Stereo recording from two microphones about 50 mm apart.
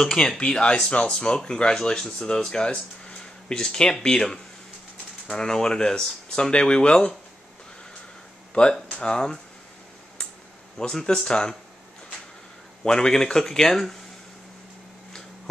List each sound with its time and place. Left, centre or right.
0.4 s speech: left
8.6 s speech: left
10.8 s speech: centre
12.8 s speech: centre